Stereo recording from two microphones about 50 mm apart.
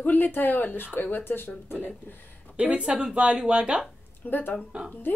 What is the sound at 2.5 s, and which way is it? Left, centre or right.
Speech, right.